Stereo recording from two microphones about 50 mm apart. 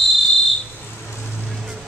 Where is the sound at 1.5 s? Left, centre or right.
Centre.